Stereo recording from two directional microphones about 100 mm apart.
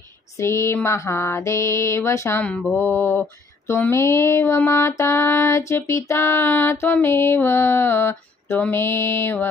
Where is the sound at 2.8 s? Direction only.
25° left (ahead or behind).